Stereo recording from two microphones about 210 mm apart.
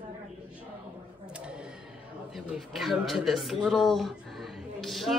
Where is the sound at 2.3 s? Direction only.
Centre (ahead or behind).